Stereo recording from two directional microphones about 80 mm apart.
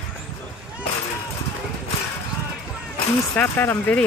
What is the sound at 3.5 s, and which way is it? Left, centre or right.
Speech, left.